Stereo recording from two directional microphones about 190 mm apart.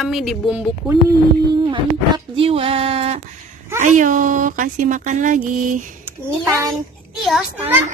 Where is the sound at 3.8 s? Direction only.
40° right (ahead or behind).